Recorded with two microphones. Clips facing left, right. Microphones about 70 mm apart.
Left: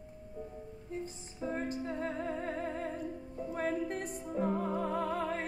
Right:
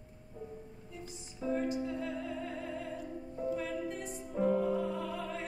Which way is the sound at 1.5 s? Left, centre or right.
Left.